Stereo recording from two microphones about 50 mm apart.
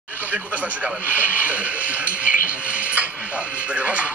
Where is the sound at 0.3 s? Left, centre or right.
Right.